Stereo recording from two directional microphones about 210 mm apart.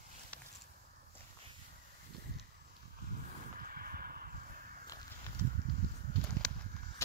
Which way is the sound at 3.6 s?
45° right (ahead or behind).